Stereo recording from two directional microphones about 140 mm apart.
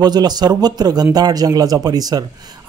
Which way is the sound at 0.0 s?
30° right (ahead or behind).